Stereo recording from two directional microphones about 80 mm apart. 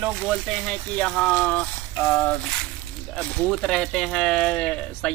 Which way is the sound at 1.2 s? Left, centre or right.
Centre.